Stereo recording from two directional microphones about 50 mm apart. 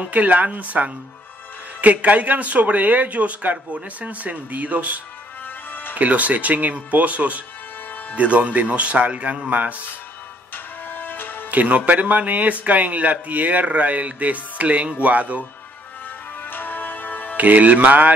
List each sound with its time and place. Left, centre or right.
0.1 s a woman's voice: right
10.5 s music: left
11.5 s speech: right
16.4 s music: left
17.4 s a woman's voice: right